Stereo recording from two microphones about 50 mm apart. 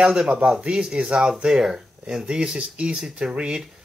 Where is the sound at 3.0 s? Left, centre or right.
Centre.